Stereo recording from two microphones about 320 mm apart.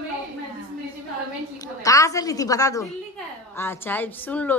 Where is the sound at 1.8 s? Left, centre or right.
Centre.